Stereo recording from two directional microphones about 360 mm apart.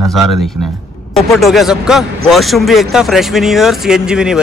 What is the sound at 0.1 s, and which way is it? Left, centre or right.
Speech, centre.